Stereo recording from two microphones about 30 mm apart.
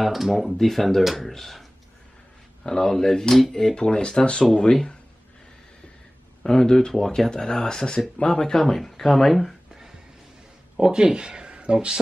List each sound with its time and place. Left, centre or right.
0.0 s speech: centre
2.6 s speech: left
2.9 s speech: centre; by 4.5 s left
4.6 s speech: centre
6.4 s speech: left
8.5 s speech: centre
10.9 s speech: right